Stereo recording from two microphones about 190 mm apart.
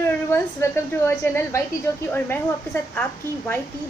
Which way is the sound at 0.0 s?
10° left (ahead or behind).